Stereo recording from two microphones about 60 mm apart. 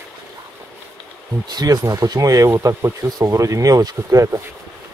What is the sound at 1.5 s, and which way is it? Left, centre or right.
Speech, right.